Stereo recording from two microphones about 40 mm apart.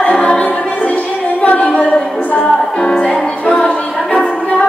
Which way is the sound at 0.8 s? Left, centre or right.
Left.